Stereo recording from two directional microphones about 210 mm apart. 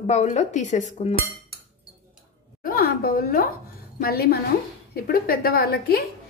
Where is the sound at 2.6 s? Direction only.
45° left (ahead or behind).